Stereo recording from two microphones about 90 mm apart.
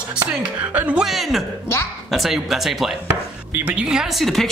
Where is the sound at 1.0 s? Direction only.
Centre (ahead or behind).